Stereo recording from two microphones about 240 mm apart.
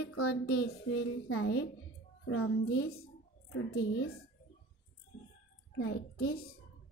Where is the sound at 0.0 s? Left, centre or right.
Left.